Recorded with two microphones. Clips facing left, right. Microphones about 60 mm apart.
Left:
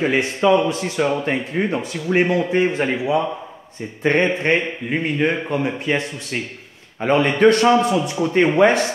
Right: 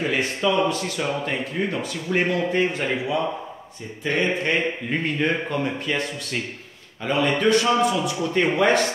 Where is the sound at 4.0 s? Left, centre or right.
Left.